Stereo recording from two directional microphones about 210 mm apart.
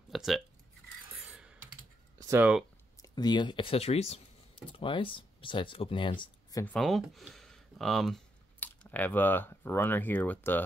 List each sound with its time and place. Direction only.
0.1 s a sound: centre (ahead or behind)
1.3 s computer keyboard: 5° right (ahead or behind)
2.1 s speech: 10° right (ahead or behind)
3.0 s speech: 20° left (ahead or behind)
6.6 s speech: 5° left (ahead or behind)